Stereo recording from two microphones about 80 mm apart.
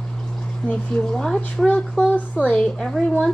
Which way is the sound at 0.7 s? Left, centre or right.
Centre.